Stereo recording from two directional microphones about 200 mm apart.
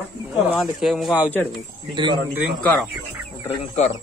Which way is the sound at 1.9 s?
25° right (ahead or behind).